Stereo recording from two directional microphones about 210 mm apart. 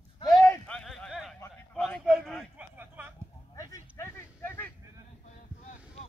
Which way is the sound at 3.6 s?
15° left (ahead or behind).